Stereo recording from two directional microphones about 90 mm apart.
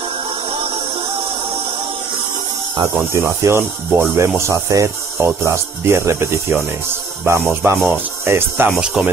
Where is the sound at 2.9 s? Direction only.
30° right (ahead or behind).